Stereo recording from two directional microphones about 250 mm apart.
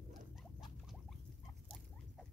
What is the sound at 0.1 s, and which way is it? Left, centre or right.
Rodents, centre.